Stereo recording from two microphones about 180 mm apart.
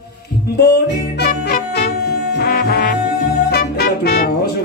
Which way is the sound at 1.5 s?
55° left (ahead or behind).